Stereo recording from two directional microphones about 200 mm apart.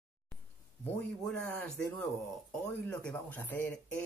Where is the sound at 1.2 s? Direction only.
5° left (ahead or behind).